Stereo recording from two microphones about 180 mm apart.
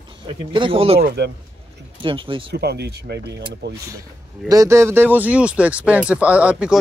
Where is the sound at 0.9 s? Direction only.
65° right (ahead or behind).